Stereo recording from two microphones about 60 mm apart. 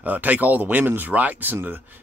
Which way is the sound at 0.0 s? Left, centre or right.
Right.